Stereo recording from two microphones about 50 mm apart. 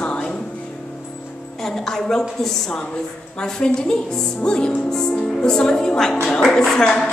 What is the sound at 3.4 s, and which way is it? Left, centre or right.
A woman's voice, centre.